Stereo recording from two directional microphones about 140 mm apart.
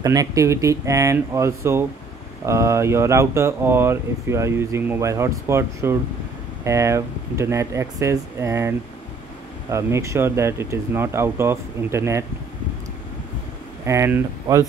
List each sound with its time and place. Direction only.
0.0 s speech: 25° right (ahead or behind)
13.8 s speech: 20° right (ahead or behind)